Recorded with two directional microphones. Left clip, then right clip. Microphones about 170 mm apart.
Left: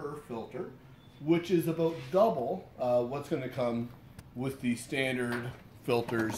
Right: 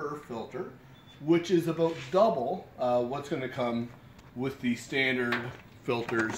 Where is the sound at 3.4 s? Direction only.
35° left (ahead or behind).